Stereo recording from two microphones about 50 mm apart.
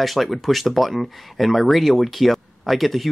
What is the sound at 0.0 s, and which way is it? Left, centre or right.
Speech, centre.